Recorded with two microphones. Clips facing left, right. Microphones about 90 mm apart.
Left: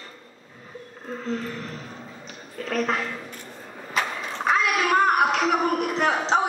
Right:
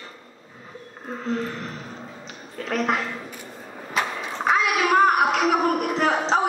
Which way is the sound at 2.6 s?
20° right (ahead or behind).